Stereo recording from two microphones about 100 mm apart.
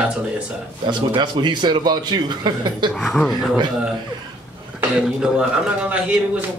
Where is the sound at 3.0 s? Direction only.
Centre (ahead or behind).